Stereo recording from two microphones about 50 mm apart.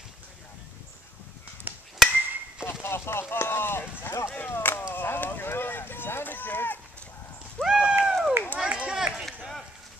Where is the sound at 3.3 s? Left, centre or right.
Left.